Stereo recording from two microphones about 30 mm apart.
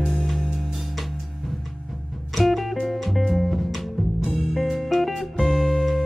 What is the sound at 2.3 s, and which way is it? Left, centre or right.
Music, centre.